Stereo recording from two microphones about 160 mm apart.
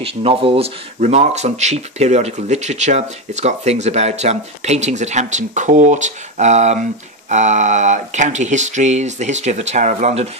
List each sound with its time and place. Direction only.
0.0 s speech: 35° right (ahead or behind)